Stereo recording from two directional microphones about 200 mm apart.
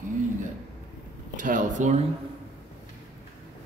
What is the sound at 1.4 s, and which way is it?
Speech, 40° right (ahead or behind).